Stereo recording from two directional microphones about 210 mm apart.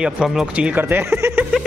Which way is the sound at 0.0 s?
5° right (ahead or behind).